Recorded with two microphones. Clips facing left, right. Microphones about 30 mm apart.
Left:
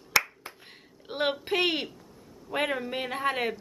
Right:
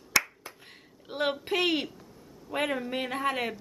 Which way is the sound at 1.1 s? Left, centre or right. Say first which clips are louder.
Left 1 dB; centre.